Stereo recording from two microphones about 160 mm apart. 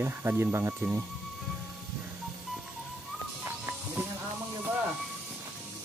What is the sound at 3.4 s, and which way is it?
Music, 15° right (ahead or behind).